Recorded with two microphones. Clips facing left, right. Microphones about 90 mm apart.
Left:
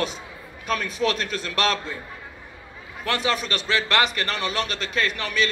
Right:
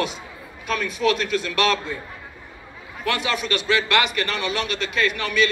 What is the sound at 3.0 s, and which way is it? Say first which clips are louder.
A man's voice: right 1 dB; 35° left (ahead or behind).